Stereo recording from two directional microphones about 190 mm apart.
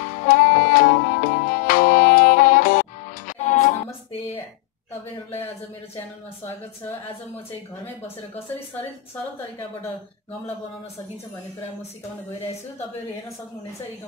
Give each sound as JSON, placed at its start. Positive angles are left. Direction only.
{"t": 0.3, "sound": "music", "side_deg": 45}